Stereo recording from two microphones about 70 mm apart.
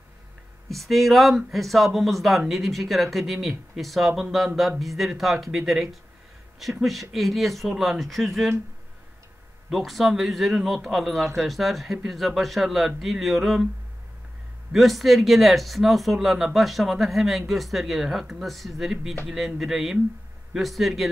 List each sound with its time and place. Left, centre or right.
0.7 s speech: centre
9.7 s speech: centre
14.7 s speech: centre